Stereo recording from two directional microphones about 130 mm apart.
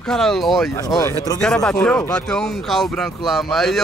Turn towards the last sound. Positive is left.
turn(degrees=0)  # may be behind; listen again after turning